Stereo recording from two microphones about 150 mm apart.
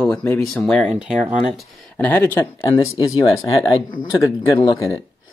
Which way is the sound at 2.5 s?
25° left (ahead or behind).